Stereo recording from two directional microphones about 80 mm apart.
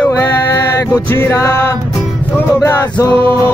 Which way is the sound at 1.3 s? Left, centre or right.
Left.